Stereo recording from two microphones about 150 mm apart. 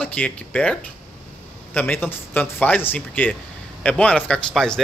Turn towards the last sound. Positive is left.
turn(degrees=5)  # may be behind; listen again after turning